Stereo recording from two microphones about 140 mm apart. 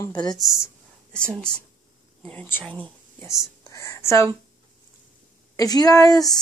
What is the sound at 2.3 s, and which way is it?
Speech, 15° left (ahead or behind).